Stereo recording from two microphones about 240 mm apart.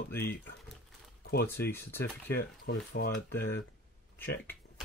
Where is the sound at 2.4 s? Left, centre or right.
Left.